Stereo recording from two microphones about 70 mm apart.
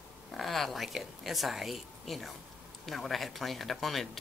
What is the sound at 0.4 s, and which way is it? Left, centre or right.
A woman's voice, centre.